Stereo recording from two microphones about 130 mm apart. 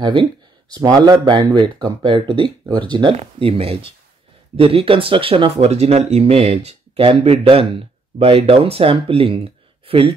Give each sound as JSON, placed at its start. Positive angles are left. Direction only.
{"t": 0.0, "sound": "speech", "side_deg": -40}